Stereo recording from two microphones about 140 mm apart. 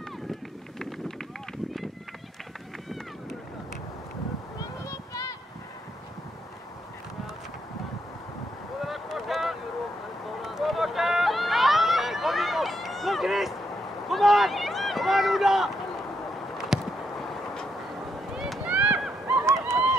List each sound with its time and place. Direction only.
0.3 s run: centre (ahead or behind)
4.6 s a sound: 25° left (ahead or behind)
8.8 s boat: centre (ahead or behind)
10.4 s run: centre (ahead or behind)
14.0 s a sound: centre (ahead or behind)
18.3 s run: 5° right (ahead or behind)
19.3 s honk: 20° right (ahead or behind)